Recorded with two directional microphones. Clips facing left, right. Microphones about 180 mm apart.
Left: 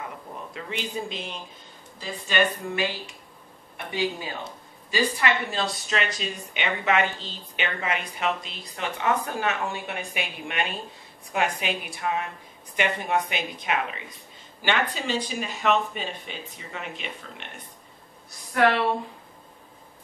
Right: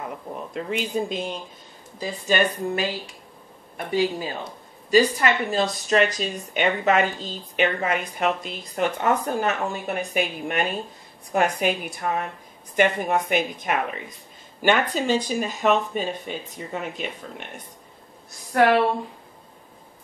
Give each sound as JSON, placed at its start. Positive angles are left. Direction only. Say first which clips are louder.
{"t": 0.6, "sound": "speech", "louder": "right 7 dB", "side_deg": -45}